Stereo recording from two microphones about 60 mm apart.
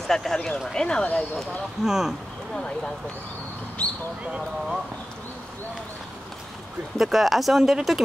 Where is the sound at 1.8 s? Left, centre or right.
Centre.